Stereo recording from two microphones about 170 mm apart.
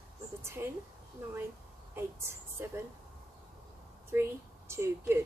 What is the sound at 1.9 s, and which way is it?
Speech, 15° right (ahead or behind).